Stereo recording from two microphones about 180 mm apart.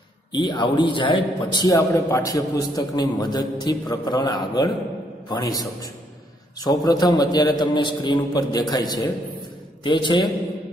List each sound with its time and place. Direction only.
0.3 s a man's voice: 25° left (ahead or behind)